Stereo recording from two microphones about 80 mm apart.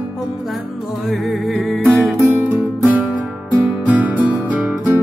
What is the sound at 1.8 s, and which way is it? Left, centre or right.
Music, right.